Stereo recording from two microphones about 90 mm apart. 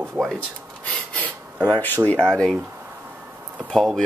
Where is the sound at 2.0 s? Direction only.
10° left (ahead or behind).